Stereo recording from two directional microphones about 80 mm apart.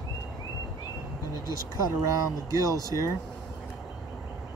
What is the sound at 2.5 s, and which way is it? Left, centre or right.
Speech, right.